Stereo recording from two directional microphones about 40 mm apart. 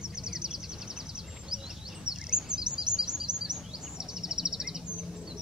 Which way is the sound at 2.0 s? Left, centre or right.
Centre.